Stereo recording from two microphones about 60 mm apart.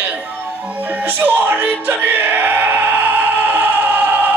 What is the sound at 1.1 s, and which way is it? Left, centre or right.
Music, right.